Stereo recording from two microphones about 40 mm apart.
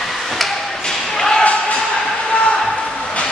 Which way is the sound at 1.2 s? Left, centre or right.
Centre.